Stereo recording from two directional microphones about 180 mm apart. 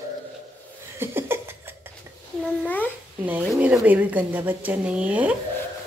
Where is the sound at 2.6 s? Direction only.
10° left (ahead or behind).